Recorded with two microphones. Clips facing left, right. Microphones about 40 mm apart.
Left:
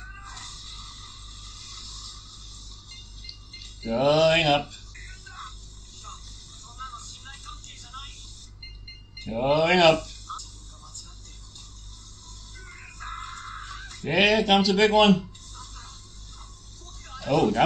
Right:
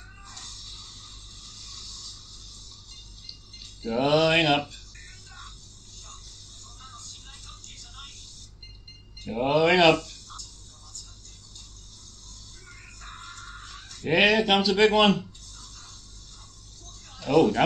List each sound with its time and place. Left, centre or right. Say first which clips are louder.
0.2 s music: left 3 dB; left
1.7 s vehicle: even; left
3.9 s speech: left 2 dB; centre
6.8 s vehicle: left 8 dB; left
9.3 s a sound: even; centre
10.3 s music: left 11 dB; left
12.6 s music: left 7 dB; left
14.0 s speech: even; centre
15.6 s music: left 5 dB; left
17.2 s speech: right 1 dB; centre